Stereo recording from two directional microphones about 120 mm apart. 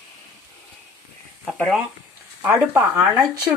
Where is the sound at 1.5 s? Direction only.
5° left (ahead or behind).